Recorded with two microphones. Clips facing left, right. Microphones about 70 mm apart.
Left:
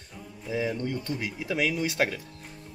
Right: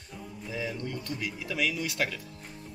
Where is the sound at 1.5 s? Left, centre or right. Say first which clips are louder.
Left 4 dB; left.